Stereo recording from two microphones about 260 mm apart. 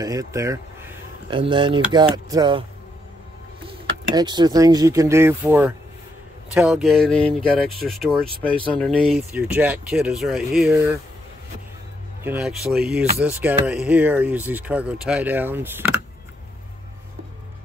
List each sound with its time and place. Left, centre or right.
0.0 s speech: centre
4.1 s speech: centre
12.2 s speech: centre